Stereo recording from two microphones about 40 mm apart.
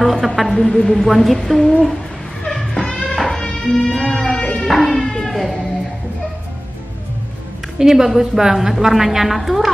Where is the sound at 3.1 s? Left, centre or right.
Centre.